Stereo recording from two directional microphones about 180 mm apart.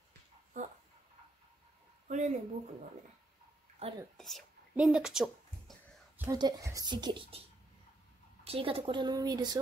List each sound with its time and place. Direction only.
0.5 s fowl: 45° right (ahead or behind)
2.0 s a sound: 40° right (ahead or behind)
3.8 s speech: 35° right (ahead or behind)
4.2 s a sound: centre (ahead or behind)
6.2 s a woman's voice: 20° right (ahead or behind)
8.5 s a woman's voice: 30° right (ahead or behind)